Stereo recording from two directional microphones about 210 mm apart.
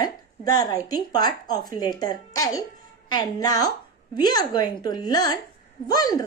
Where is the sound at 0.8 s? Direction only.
20° left (ahead or behind).